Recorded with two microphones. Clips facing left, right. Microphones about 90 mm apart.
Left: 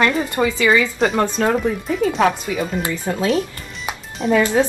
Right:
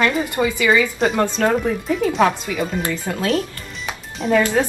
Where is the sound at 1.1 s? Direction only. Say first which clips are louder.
Right 1 dB; 15° left (ahead or behind).